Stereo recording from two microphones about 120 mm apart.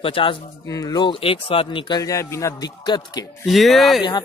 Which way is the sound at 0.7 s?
30° left (ahead or behind).